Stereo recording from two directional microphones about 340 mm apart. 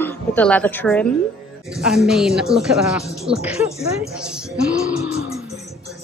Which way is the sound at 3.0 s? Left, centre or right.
Centre.